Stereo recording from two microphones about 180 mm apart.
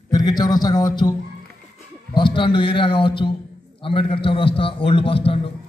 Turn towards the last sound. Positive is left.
turn(degrees=30)  # may be behind; listen again after turning